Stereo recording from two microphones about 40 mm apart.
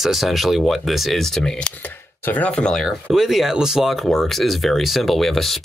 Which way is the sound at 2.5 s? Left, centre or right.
Centre.